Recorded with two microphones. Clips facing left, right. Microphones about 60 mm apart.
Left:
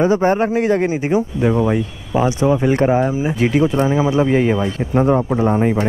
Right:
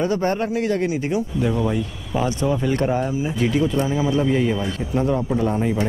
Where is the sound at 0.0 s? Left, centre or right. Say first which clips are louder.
Left 6 dB; left.